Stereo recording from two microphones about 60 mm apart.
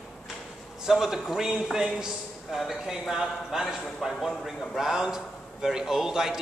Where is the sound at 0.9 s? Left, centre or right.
Centre.